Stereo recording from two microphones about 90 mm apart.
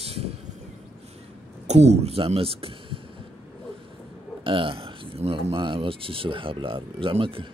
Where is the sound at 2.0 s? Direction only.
90° right.